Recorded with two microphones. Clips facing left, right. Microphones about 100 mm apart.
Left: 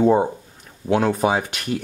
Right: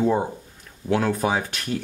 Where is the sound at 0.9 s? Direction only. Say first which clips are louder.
Left 3 dB; 20° left (ahead or behind).